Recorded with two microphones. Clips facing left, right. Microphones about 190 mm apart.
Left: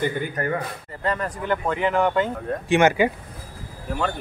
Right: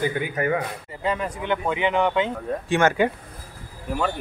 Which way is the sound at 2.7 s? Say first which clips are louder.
Left 3 dB; 15° left (ahead or behind).